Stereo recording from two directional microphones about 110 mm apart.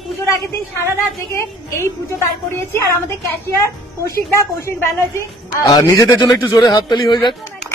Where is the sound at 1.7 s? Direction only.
25° left (ahead or behind).